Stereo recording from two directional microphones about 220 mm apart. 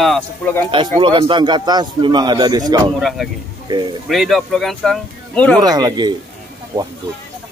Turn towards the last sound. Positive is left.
turn(degrees=-15)  # may be behind; listen again after turning